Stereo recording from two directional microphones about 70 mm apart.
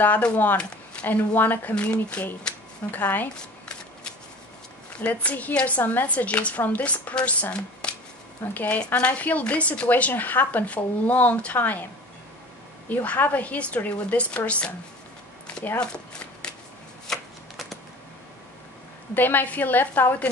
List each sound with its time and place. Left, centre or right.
0.0 s speech: left
5.0 s speech: centre
12.9 s speech: left
15.4 s a sound: left
17.1 s shuffling cards: centre
19.1 s speech: left